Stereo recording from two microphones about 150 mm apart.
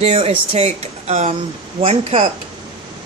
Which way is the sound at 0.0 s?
40° right (ahead or behind).